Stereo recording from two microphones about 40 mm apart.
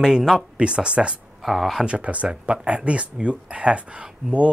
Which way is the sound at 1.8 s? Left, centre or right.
Right.